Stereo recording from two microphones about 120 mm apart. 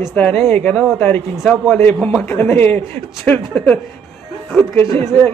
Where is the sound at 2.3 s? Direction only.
20° left (ahead or behind).